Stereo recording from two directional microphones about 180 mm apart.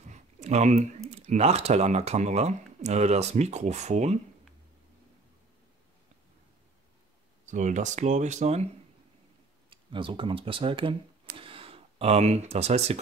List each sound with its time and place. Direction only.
0.1 s speech: 40° right (ahead or behind)
7.4 s speech: 40° right (ahead or behind)
9.7 s speech: 30° right (ahead or behind)